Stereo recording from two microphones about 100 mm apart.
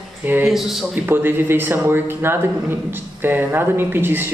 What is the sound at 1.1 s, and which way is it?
A man's voice, 20° right (ahead or behind).